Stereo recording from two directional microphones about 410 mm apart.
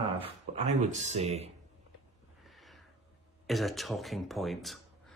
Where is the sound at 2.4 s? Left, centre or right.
Centre.